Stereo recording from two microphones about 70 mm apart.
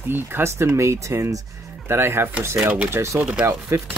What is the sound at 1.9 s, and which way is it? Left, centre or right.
Speech, right.